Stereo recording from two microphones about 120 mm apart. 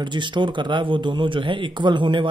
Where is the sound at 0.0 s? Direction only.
40° right (ahead or behind).